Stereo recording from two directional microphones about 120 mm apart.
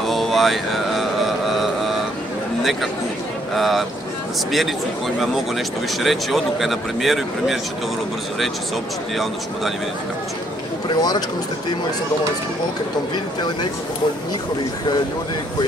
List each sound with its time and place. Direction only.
0.0 s mantra: centre (ahead or behind)
3.5 s speech: centre (ahead or behind)
10.9 s speech: 35° left (ahead or behind)
13.1 s speech: 40° left (ahead or behind)